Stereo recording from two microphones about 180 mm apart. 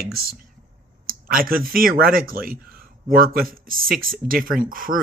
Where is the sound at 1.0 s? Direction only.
55° right (ahead or behind).